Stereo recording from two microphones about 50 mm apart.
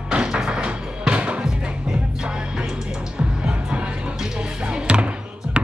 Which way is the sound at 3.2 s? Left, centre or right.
Right.